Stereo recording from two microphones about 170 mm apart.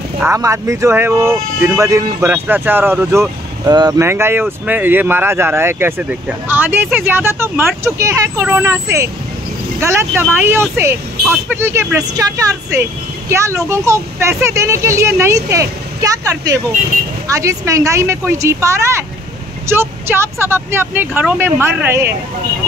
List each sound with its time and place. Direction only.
0.2 s speech: 15° right (ahead or behind)
9.8 s speech: 15° right (ahead or behind)